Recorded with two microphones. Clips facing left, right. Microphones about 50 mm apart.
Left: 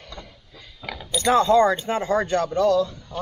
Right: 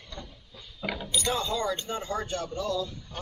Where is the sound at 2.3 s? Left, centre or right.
Left.